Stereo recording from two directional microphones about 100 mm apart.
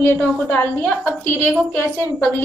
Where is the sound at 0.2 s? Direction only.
15° left (ahead or behind).